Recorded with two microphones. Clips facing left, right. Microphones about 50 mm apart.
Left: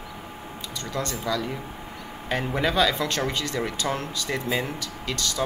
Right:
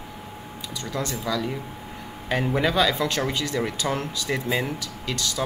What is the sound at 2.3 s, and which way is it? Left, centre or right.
Speech, centre.